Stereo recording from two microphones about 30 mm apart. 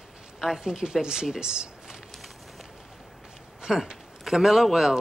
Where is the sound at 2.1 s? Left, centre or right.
Centre.